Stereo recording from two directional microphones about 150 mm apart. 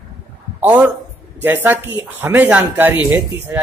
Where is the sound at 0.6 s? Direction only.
10° right (ahead or behind).